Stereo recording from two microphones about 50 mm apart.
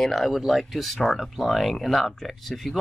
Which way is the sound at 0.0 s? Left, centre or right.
Centre.